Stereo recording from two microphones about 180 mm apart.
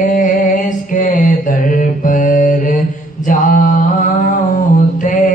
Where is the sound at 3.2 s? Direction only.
45° left (ahead or behind).